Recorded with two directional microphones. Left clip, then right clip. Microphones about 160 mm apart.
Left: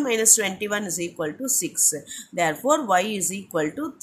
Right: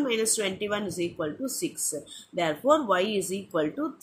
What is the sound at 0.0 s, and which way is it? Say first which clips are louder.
Speech: left 5 dB; 25° left (ahead or behind).